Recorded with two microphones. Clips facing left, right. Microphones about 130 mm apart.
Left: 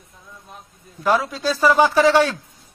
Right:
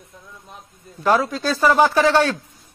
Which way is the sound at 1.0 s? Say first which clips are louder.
Right 1 dB; 5° left (ahead or behind).